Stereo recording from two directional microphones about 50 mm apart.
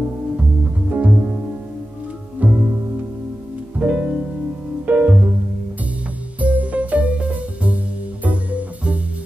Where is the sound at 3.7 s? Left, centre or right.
Right.